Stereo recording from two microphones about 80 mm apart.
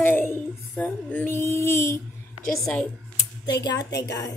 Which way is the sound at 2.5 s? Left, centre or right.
Centre.